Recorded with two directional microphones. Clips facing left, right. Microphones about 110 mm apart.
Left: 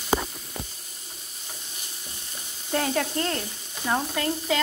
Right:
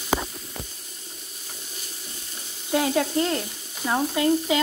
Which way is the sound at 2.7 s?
10° right (ahead or behind).